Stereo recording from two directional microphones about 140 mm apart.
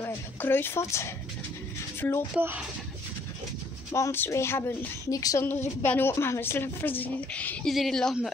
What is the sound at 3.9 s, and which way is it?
A woman's voice, 20° left (ahead or behind).